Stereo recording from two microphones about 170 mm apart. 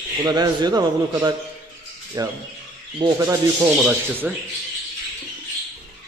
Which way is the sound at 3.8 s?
10° right (ahead or behind).